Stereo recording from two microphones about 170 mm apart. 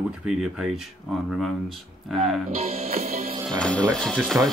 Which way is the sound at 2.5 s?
35° right (ahead or behind).